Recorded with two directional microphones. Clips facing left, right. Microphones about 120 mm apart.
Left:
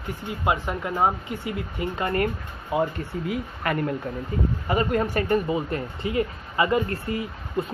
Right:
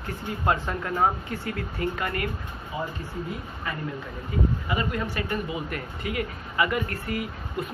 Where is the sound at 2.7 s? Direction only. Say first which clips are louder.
Left 8 dB; 65° left (ahead or behind).